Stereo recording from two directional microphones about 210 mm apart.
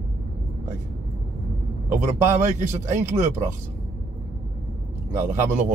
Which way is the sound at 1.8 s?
35° right (ahead or behind).